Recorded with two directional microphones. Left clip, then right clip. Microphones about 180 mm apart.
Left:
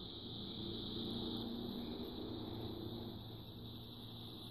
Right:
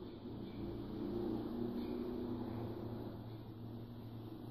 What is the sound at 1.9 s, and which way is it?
Vehicle, centre (ahead or behind).